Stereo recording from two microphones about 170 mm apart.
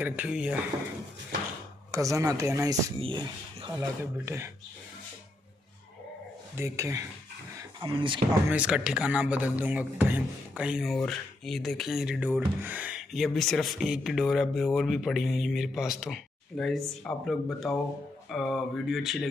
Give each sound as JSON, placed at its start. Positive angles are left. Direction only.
{"t": 0.0, "sound": "speech", "side_deg": -10}
{"t": 1.9, "sound": "speech", "side_deg": -20}
{"t": 3.0, "sound": "speech", "side_deg": -30}
{"t": 4.0, "sound": "speech", "side_deg": -15}
{"t": 6.5, "sound": "speech", "side_deg": -15}
{"t": 7.5, "sound": "a sound", "side_deg": -30}
{"t": 8.5, "sound": "speech", "side_deg": -5}